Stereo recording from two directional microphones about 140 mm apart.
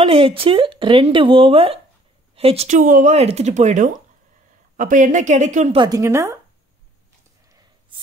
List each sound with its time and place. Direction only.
0.1 s a woman's voice: 40° right (ahead or behind)
2.8 s speech: 70° right (ahead or behind)
5.8 s a woman's voice: 25° right (ahead or behind)